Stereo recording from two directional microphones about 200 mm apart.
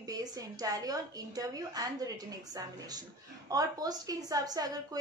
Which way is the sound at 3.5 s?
20° right (ahead or behind).